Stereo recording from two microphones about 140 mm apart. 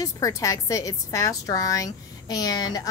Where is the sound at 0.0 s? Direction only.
25° left (ahead or behind).